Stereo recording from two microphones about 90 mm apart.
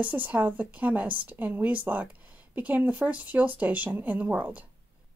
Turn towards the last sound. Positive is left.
turn(degrees=-15)  # may be behind; listen again after turning